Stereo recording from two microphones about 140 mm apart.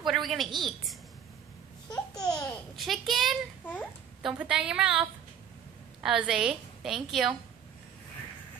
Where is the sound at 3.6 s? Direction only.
10° left (ahead or behind).